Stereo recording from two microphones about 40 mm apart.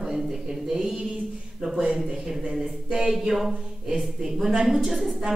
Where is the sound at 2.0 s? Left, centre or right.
Centre.